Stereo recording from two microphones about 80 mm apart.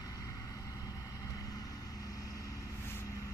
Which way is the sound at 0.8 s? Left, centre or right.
Left.